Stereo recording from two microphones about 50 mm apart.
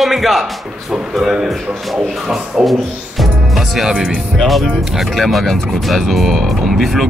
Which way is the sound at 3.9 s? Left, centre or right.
Right.